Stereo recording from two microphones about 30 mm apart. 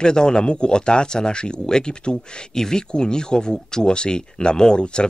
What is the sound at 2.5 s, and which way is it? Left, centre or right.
Speech, centre.